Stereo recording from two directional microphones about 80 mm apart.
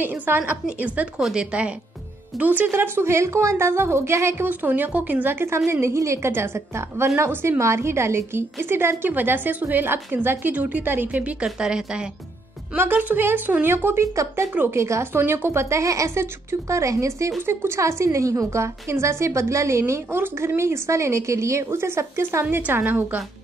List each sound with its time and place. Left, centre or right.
0.0 s a woman's voice: right
4.5 s a woman's voice: right
11.4 s a woman's voice: centre
12.7 s a woman's voice: right
14.5 s a woman's voice: right
14.8 s a woman's voice: right
22.6 s a woman's voice: right